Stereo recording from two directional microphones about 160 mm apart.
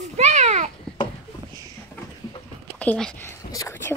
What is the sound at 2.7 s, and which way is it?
Speech, 5° left (ahead or behind).